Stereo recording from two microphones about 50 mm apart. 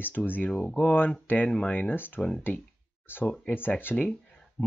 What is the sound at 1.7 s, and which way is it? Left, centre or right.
Speech, left.